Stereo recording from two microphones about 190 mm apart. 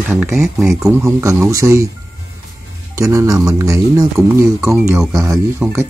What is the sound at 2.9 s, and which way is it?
Speech, 15° right (ahead or behind).